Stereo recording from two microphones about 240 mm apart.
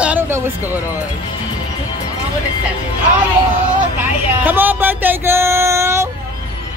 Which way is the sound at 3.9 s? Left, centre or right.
Centre.